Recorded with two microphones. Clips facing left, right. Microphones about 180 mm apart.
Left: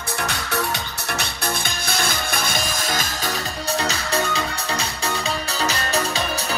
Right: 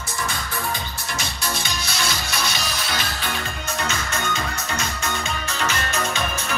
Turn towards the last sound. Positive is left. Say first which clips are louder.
# left 2 dB
turn(degrees=35)  # may be behind; listen again after turning